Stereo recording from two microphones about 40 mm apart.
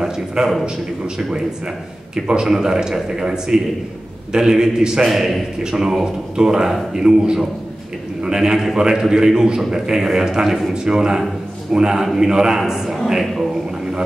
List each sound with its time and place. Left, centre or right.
0.4 s a man's voice: centre
5.0 s a man's voice: centre
5.6 s a man's voice: centre